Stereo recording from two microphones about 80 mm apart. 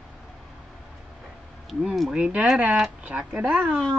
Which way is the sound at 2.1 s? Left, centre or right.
Centre.